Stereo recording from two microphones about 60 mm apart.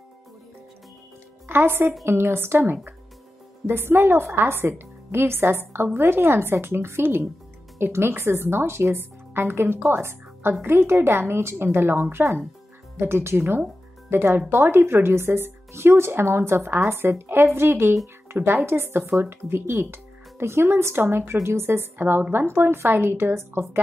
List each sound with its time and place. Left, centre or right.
1.5 s a woman's voice: right